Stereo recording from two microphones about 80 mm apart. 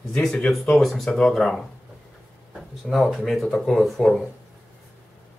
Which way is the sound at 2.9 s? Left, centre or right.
Centre.